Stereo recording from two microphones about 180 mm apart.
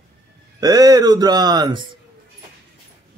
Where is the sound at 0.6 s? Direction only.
20° right (ahead or behind).